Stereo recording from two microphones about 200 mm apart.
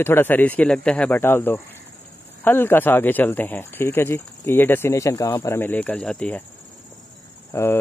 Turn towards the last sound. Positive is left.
turn(degrees=15)  # may be behind; listen again after turning